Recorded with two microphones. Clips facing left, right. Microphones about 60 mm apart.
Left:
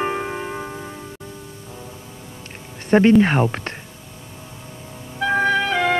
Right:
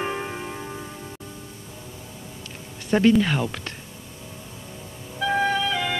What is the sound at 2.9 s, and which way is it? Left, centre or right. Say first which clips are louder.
Speech: left 5 dB; left.